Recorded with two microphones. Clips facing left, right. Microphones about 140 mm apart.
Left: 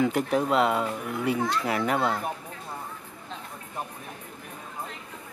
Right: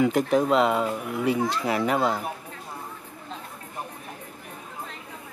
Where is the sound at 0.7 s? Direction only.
10° right (ahead or behind).